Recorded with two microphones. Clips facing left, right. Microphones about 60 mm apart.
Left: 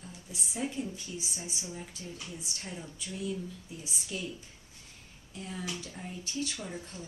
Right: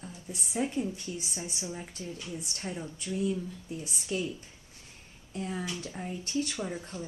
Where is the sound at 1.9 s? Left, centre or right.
Right.